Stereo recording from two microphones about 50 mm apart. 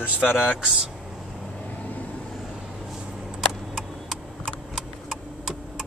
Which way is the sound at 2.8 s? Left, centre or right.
Centre.